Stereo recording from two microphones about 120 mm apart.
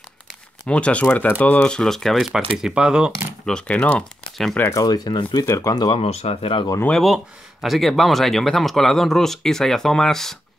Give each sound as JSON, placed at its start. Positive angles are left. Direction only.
{"t": 0.7, "sound": "speech", "side_deg": 10}
{"t": 3.4, "sound": "speech", "side_deg": 10}
{"t": 4.6, "sound": "speech", "side_deg": 30}
{"t": 5.4, "sound": "speech", "side_deg": 25}
{"t": 5.9, "sound": "speech", "side_deg": 60}
{"t": 7.6, "sound": "speech", "side_deg": 0}